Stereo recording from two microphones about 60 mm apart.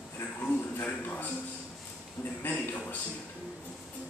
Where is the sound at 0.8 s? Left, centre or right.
Left.